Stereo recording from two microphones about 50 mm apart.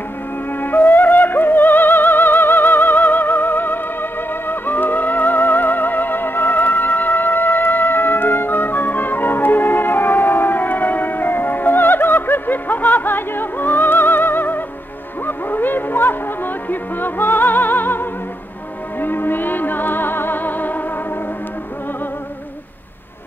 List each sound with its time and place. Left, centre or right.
0.6 s music: left